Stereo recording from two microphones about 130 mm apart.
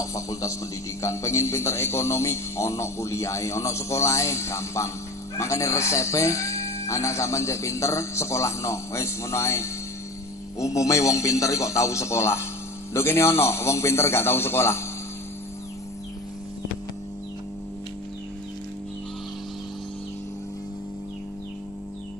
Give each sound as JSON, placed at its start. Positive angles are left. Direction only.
{"t": 0.0, "sound": "speech", "side_deg": 25}